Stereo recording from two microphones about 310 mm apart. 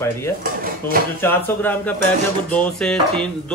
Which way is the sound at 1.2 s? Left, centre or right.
Centre.